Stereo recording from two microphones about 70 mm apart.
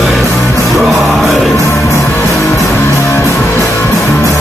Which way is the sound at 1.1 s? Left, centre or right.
Centre.